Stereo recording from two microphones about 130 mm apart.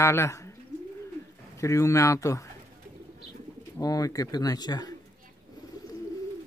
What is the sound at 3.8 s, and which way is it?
A man's voice, 30° left (ahead or behind).